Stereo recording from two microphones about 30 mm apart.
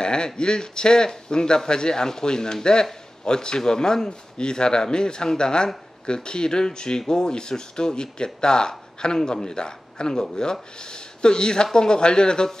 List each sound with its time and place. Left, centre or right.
0.0 s speech: left